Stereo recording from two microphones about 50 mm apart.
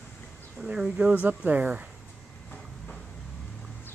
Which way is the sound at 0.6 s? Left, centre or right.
Centre.